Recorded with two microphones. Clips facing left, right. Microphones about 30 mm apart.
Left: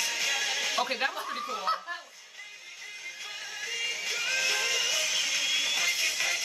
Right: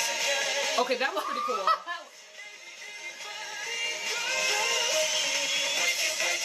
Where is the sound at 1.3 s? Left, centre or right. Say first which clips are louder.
Right 4 dB; centre.